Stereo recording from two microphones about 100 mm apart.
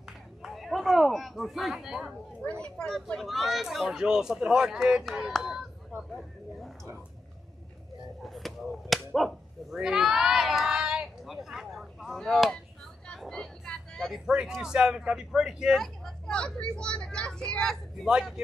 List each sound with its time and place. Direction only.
0.4 s a sound: centre (ahead or behind)
2.4 s speech: 15° left (ahead or behind)
2.9 s speech: centre (ahead or behind)
8.2 s speech: centre (ahead or behind)